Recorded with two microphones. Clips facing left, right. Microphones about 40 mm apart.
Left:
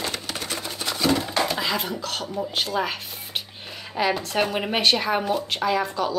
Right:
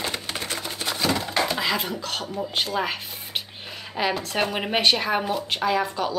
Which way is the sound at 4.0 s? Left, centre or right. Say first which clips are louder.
Left 2 dB; centre.